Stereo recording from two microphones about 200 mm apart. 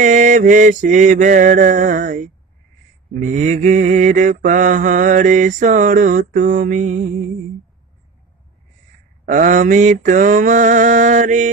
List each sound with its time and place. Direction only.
0.0 s mantra: 40° right (ahead or behind)
9.2 s mantra: 40° right (ahead or behind)